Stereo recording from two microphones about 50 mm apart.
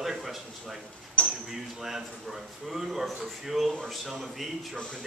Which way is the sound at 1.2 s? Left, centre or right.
Left.